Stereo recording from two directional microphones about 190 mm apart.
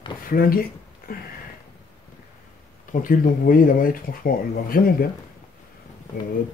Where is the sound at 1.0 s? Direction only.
50° left (ahead or behind).